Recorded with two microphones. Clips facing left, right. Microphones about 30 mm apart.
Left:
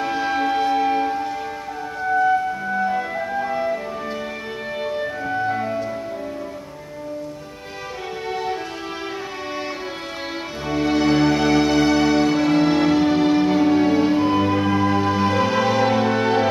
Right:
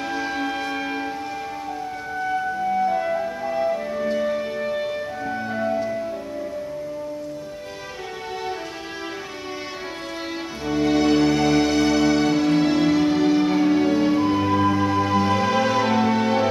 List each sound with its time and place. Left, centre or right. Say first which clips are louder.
0.0 s music: left 4 dB; centre
2.2 s music: left 4 dB; centre
3.6 s music: right 2 dB; centre
8.3 s music: left 4 dB; centre
10.7 s music: even; centre